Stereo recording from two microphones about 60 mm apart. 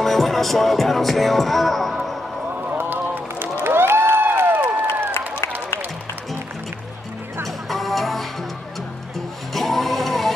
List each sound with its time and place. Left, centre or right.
0.0 s music: centre
2.5 s run: right
2.8 s run: right
3.6 s a sound: right
7.7 s music: centre
9.5 s music: centre